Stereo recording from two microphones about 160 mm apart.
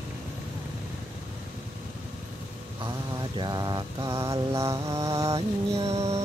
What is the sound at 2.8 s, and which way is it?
Mantra, 25° right (ahead or behind).